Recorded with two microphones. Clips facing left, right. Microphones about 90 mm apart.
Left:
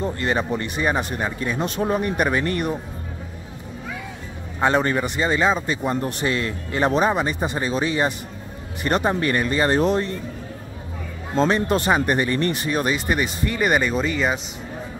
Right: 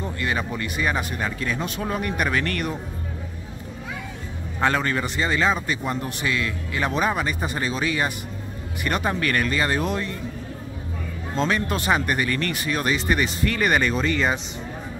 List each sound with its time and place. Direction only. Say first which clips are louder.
0.0 s a sound: left 4 dB; 35° left (ahead or behind)
0.4 s speech: left 3 dB; 25° left (ahead or behind)
4.6 s speech: left 3 dB; 20° left (ahead or behind)
5.9 s speech: left 3 dB; 35° left (ahead or behind)
11.3 s speech: left 5 dB; 30° left (ahead or behind); by 14.4 s 5° left (ahead or behind)